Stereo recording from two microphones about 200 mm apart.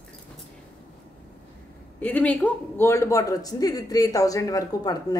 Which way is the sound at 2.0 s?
5° left (ahead or behind).